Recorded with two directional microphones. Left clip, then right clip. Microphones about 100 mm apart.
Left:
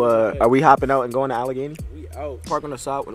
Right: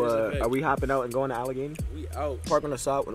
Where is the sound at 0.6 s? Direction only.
65° left (ahead or behind).